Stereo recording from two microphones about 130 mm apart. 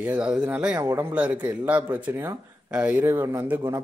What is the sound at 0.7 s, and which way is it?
Speech, 25° right (ahead or behind).